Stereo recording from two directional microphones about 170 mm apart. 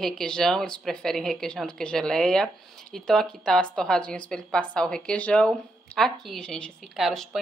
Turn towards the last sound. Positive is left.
turn(degrees=0)  # may be behind; listen again after turning